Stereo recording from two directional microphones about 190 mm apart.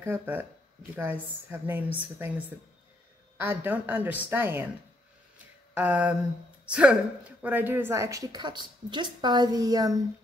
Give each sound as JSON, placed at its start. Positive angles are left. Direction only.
{"t": 0.0, "sound": "speech", "side_deg": -10}
{"t": 5.8, "sound": "a woman's voice", "side_deg": -5}